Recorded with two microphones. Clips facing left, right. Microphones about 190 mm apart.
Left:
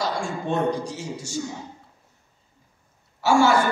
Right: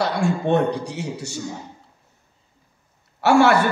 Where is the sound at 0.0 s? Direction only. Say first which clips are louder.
Right 6 dB; 65° right (ahead or behind).